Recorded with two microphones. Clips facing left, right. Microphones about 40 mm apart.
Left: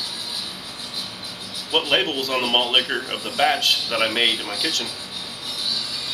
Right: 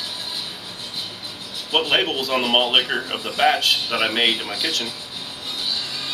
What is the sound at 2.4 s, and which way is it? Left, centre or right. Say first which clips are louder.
Speech: right 2 dB; centre.